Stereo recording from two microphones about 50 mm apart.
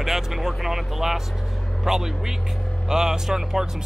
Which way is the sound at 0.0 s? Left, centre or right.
Centre.